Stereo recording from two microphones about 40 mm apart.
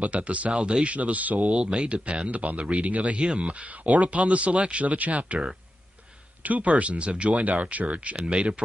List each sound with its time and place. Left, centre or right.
0.0 s speech: right
0.9 s speech: right
1.6 s speech: right
6.4 s speech: right